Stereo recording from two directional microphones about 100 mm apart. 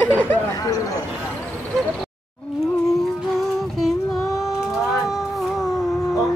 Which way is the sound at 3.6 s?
Centre (ahead or behind).